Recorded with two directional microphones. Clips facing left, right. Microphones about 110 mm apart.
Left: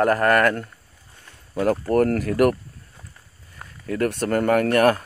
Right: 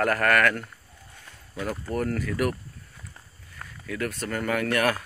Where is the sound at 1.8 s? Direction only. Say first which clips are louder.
Left 6 dB; 60° left (ahead or behind).